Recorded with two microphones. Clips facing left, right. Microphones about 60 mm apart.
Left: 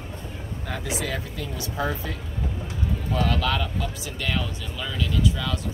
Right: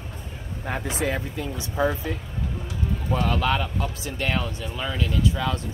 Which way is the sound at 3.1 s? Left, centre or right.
Right.